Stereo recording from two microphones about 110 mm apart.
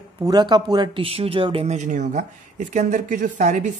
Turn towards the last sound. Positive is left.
turn(degrees=-90)